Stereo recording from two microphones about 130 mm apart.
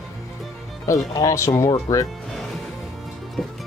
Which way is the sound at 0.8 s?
25° left (ahead or behind).